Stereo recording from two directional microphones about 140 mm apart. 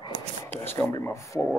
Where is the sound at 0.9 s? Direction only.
25° left (ahead or behind).